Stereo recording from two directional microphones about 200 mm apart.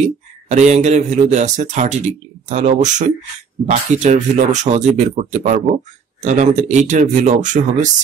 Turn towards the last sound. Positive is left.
turn(degrees=-40)  # may be behind; listen again after turning